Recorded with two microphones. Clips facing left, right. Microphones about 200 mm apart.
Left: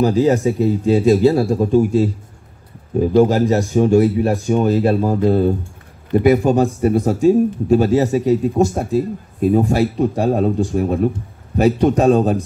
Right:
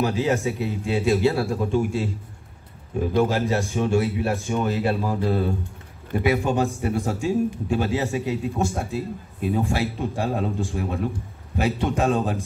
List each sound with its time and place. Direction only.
0.0 s speech: 35° left (ahead or behind)
3.3 s speech: 40° left (ahead or behind)